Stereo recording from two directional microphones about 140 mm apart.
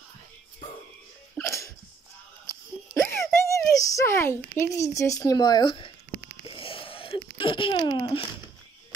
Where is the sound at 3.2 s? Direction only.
20° left (ahead or behind).